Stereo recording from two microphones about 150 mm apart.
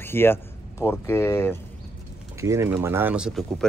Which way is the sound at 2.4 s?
20° right (ahead or behind).